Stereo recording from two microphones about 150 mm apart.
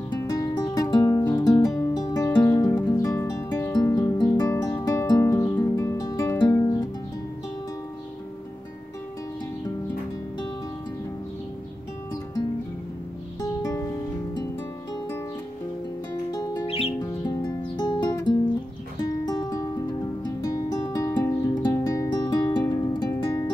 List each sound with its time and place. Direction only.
0.1 s music: 20° left (ahead or behind)
13.4 s music: 25° left (ahead or behind)
16.3 s music: 25° left (ahead or behind)
16.6 s music: 40° left (ahead or behind)
17.0 s music: 25° left (ahead or behind)